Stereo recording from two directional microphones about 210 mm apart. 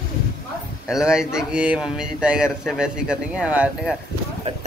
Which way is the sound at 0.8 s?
5° right (ahead or behind).